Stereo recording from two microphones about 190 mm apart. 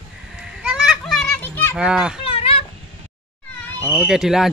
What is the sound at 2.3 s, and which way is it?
Cat, 30° left (ahead or behind).